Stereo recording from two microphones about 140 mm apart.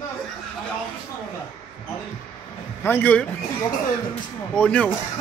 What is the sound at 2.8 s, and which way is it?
Speech, 15° left (ahead or behind).